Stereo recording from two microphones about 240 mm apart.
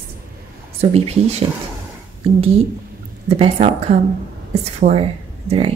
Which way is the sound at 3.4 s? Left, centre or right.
Right.